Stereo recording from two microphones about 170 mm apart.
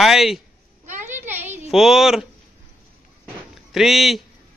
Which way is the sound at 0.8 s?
45° right (ahead or behind).